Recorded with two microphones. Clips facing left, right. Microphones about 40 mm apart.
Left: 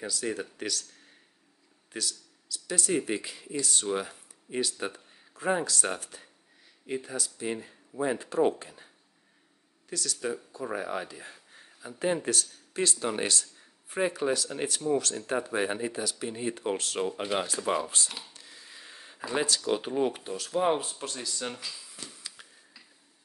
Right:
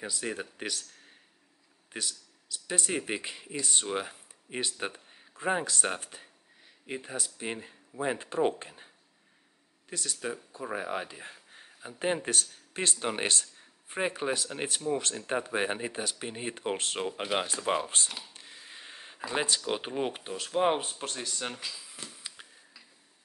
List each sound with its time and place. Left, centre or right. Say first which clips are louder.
0.0 s speech: left 2 dB; right
1.9 s speech: left 2 dB; right
9.8 s speech: left 2 dB; right
10.6 s speech: even; centre
11.1 s a sound: even; right
12.0 s speech: left 2 dB; right
17.1 s speech: left 1 dB; centre
17.8 s speech: even; right
18.3 s a sound: right 1 dB; right
19.3 s speech: left 2 dB; right
22.1 s a sound: even; centre